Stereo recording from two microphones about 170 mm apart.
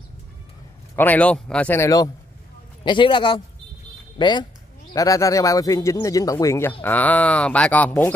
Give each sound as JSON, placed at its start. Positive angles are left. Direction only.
{"t": 0.9, "sound": "speech", "side_deg": 10}